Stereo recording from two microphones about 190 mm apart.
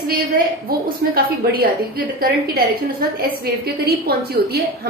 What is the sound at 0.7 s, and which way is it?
A woman's voice, 50° right (ahead or behind).